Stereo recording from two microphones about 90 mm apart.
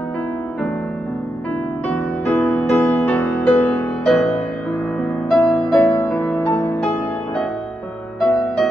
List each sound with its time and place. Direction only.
1.9 s music: 15° left (ahead or behind)
5.4 s music: 15° left (ahead or behind)
8.2 s music: 10° left (ahead or behind)